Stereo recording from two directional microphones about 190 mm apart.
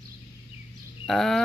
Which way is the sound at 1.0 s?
Centre (ahead or behind).